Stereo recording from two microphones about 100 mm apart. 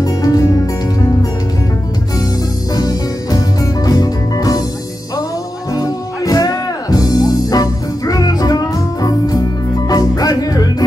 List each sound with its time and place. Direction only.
0.0 s music: 35° left (ahead or behind)
2.7 s music: 40° left (ahead or behind)
5.7 s music: 35° left (ahead or behind)